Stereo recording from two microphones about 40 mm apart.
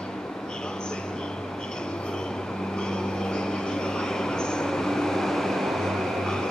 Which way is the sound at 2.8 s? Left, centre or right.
Centre.